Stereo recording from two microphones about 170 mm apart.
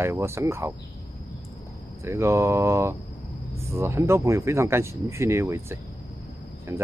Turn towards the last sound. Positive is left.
turn(degrees=-15)  # may be behind; listen again after turning